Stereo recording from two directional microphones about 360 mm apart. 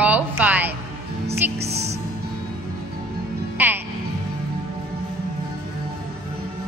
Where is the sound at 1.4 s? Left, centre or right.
Centre.